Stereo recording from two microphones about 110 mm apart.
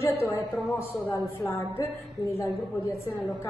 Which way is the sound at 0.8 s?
25° left (ahead or behind).